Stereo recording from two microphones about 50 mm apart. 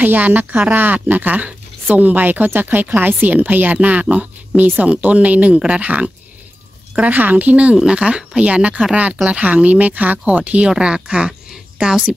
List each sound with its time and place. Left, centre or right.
0.0 s speech: right
10.8 s speech: centre